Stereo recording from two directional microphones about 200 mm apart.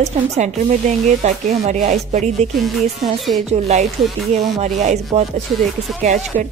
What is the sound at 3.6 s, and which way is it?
A woman's voice, 35° right (ahead or behind).